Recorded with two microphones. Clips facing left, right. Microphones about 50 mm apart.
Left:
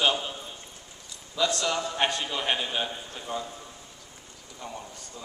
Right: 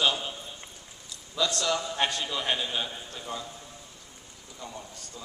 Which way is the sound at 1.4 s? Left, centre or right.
Left.